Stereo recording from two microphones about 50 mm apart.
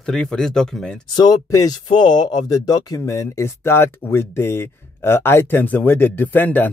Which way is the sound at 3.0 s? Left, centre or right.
Left.